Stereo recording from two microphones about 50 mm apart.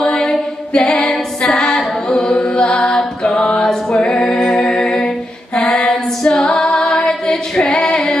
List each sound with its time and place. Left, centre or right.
0.0 s a sound: centre
1.5 s singing: centre
3.3 s a capella: left
5.6 s female singing: centre